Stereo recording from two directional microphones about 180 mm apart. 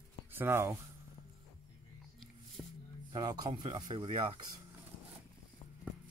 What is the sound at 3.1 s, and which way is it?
Speech, 25° right (ahead or behind).